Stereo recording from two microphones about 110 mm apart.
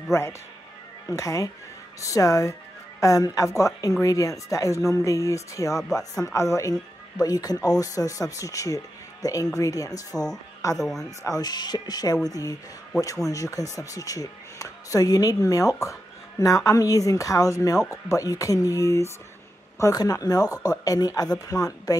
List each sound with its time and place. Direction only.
0.1 s speech: 25° left (ahead or behind)
10.8 s speech: 5° left (ahead or behind)
11.2 s speech: 35° left (ahead or behind)